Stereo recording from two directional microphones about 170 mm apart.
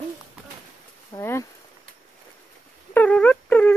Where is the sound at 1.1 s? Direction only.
15° left (ahead or behind).